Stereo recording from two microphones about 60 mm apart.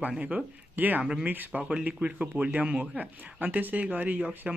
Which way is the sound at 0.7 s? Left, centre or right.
Right.